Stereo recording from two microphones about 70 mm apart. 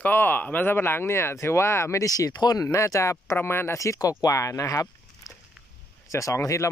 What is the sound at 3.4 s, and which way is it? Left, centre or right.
Speech, left.